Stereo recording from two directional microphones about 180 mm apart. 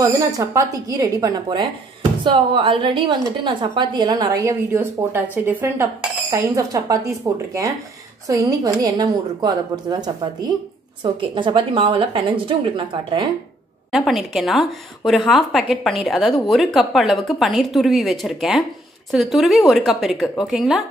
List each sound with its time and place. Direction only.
0.0 s a woman's voice: 20° right (ahead or behind)
13.9 s a woman's voice: centre (ahead or behind)